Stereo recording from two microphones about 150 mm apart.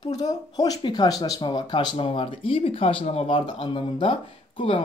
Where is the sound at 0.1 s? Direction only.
25° left (ahead or behind).